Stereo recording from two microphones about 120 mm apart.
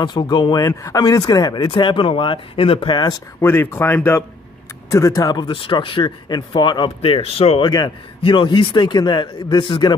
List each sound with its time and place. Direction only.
0.0 s speech: 40° left (ahead or behind)
3.4 s speech: 20° left (ahead or behind); by 7.7 s 55° left (ahead or behind)
7.7 s speech: 40° left (ahead or behind)